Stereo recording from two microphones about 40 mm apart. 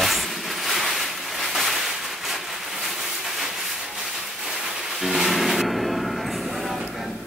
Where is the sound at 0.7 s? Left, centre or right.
Centre.